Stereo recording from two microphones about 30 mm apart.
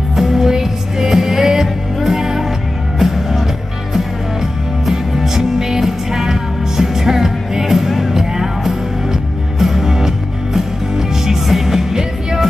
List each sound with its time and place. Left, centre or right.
0.1 s music: centre